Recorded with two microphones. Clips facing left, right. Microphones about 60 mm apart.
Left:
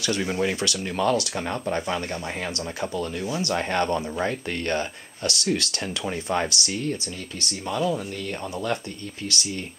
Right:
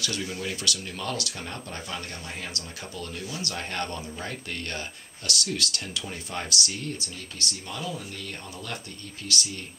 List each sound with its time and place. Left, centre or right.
0.0 s speech: left
1.3 s speech: left